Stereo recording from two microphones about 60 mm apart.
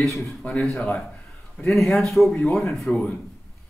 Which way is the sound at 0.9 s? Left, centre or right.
Left.